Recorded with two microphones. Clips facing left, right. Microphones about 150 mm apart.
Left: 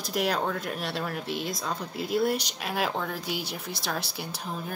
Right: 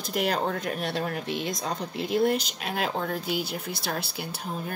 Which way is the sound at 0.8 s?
50° right (ahead or behind).